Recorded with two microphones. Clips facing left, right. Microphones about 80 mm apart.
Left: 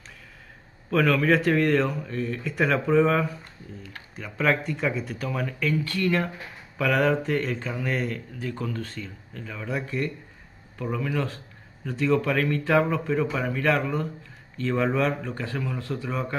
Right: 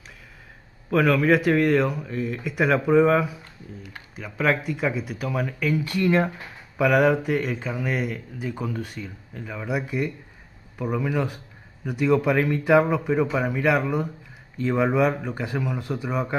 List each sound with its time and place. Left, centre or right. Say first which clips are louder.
0.8 s speech: right 2 dB; centre